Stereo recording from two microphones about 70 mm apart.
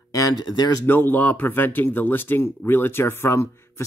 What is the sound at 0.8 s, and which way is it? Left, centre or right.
Speech, left.